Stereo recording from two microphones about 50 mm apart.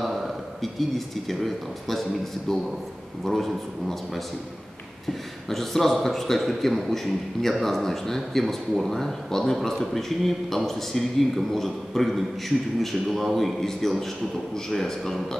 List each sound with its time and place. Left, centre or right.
0.0 s speech: centre
3.3 s a man's voice: centre
5.5 s speech: centre